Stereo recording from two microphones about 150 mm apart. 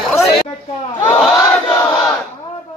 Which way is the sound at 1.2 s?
Centre (ahead or behind).